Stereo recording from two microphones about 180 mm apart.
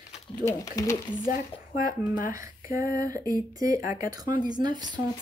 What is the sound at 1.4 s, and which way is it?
Speech, 50° left (ahead or behind).